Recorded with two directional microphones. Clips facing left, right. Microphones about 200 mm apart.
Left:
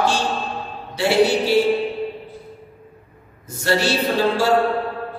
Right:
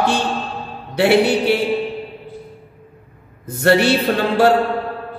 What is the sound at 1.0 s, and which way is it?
Speech, 60° right (ahead or behind).